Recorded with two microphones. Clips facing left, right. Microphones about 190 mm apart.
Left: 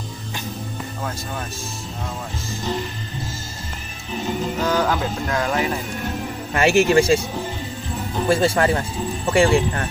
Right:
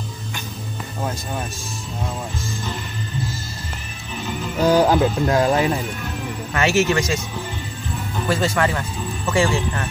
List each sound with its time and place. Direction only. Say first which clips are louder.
4.1 s speech: left 4 dB; 35° left (ahead or behind)
4.6 s speech: right 7 dB; 35° right (ahead or behind)
6.5 s speech: left 3 dB; 30° left (ahead or behind)
8.3 s speech: left 3 dB; 30° left (ahead or behind)